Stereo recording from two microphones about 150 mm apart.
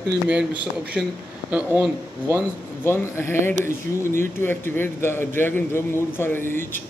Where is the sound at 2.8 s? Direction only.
15° left (ahead or behind).